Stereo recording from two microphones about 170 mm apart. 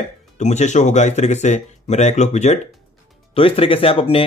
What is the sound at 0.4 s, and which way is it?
Speech, 45° left (ahead or behind).